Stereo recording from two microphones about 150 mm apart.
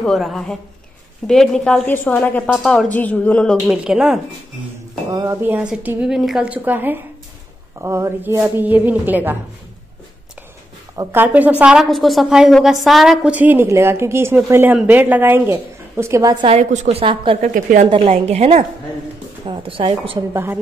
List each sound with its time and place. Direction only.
0.0 s a woman's voice: centre (ahead or behind)
3.5 s a woman's voice: 5° right (ahead or behind)
5.1 s speech: 25° right (ahead or behind)
5.4 s a woman's voice: 10° right (ahead or behind)
11.0 s a woman's voice: 15° right (ahead or behind)
16.4 s a woman's voice: 45° right (ahead or behind)
17.4 s a woman's voice: 60° right (ahead or behind)
17.8 s a woman's voice: 40° right (ahead or behind)
19.4 s a woman's voice: 35° right (ahead or behind)